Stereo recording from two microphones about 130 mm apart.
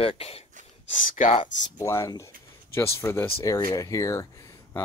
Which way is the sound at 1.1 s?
65° left (ahead or behind).